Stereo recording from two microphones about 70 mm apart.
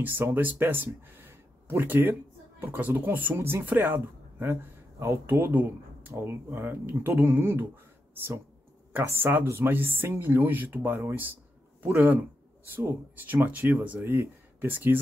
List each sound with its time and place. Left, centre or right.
0.0 s speech: right
3.3 s speech: right
3.6 s speech: right
4.9 s speech: right
5.2 s speech: right
9.0 s speech: right